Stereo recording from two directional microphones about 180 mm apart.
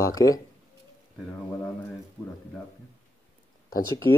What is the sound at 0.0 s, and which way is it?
Speech, 20° left (ahead or behind).